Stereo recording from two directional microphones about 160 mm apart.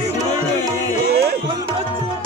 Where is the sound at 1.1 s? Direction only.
85° right.